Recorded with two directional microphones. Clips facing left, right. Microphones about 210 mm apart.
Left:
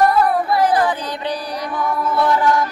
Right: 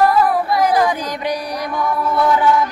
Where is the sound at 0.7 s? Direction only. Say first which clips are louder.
Right 3 dB; 10° right (ahead or behind).